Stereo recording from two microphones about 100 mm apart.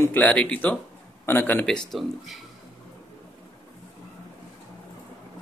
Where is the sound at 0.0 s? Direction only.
20° left (ahead or behind).